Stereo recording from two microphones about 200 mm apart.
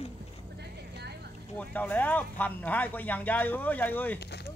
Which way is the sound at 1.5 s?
10° left (ahead or behind).